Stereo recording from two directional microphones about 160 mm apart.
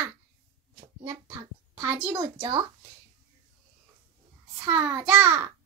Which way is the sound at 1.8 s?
15° right (ahead or behind).